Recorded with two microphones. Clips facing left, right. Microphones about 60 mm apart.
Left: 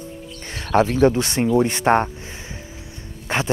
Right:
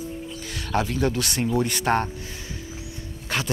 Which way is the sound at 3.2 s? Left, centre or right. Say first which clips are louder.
Left 5 dB; left.